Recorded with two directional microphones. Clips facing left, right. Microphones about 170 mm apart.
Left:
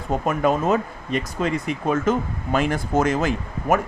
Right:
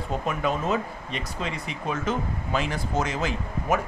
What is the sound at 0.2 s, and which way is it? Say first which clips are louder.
Speech: left 7 dB; 45° left (ahead or behind).